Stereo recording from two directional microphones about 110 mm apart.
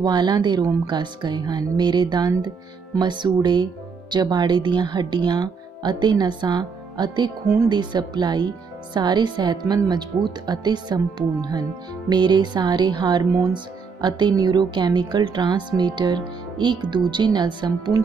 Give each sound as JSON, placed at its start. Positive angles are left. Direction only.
{"t": 0.0, "sound": "speech", "side_deg": -40}